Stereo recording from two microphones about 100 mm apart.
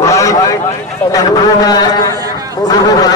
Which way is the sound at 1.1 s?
40° left (ahead or behind).